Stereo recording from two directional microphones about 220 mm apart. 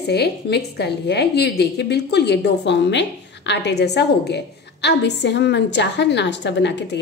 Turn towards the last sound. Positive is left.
turn(degrees=50)  # may be behind; listen again after turning